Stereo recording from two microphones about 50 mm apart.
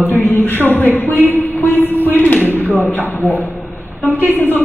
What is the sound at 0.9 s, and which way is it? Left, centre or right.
A man's voice, left.